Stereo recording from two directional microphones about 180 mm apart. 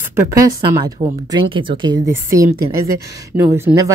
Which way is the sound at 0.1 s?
20° right (ahead or behind).